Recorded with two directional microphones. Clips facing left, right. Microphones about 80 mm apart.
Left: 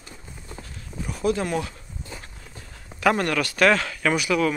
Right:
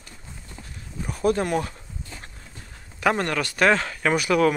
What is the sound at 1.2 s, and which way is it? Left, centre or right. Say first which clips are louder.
Speech: right 2 dB; right.